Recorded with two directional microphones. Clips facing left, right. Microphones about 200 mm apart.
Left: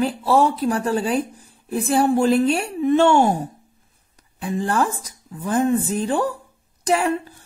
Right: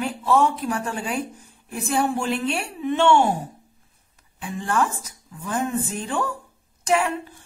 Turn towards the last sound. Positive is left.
turn(degrees=40)  # may be behind; listen again after turning